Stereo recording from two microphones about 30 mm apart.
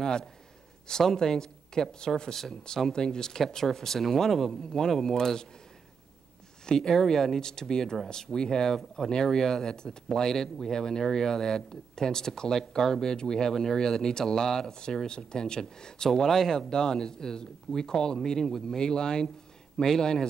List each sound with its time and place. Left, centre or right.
0.0 s speech: left; by 4.6 s centre
5.0 s speech: centre
6.6 s speech: left
14.7 s speech: left